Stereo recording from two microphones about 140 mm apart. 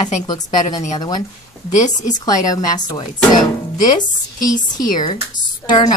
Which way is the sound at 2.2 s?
25° left (ahead or behind).